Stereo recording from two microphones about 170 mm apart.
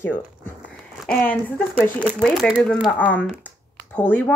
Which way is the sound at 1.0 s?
10° left (ahead or behind).